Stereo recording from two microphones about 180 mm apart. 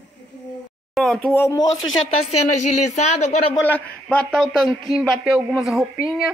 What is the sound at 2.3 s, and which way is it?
Speech, 40° left (ahead or behind).